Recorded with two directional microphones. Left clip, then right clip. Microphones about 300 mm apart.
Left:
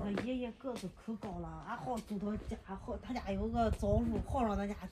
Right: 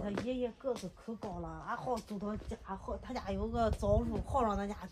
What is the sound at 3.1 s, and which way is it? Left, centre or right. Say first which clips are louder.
Speech: even; centre.